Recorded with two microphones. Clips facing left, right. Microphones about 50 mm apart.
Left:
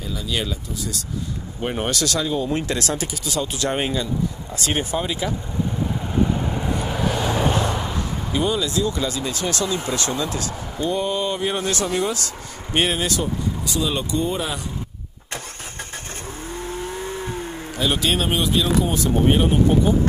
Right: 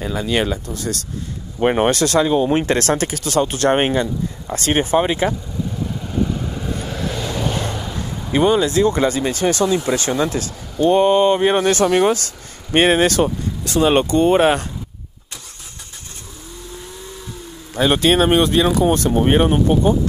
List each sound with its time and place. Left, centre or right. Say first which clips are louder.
0.0 s speech: right 7 dB; right
5.9 s vehicle: even; centre
8.3 s speech: right 8 dB; right
10.8 s speech: right 10 dB; right
16.5 s vehicle: left 6 dB; left
17.7 s speech: right 7 dB; right